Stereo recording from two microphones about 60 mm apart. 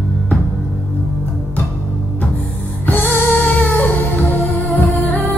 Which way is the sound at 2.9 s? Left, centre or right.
Left.